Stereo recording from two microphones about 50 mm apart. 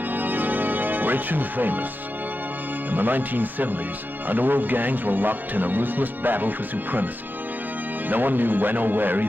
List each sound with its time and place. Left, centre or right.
0.1 s music: right
2.9 s speech: right
8.1 s speech: right